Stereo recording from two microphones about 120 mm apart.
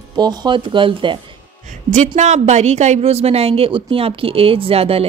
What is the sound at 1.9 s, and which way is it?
A woman's voice, 80° right.